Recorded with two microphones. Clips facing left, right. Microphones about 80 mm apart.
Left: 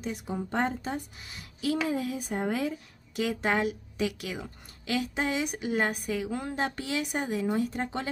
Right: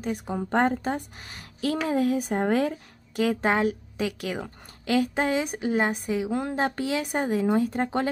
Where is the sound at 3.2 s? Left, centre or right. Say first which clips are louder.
Right 4 dB; right.